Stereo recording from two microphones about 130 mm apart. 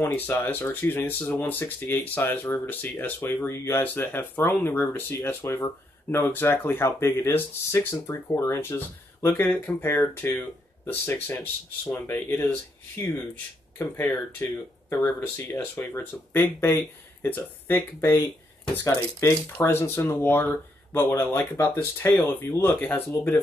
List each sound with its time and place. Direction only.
0.0 s speech: 15° left (ahead or behind)